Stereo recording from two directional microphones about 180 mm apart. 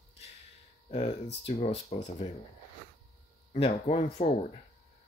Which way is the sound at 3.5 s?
35° left (ahead or behind).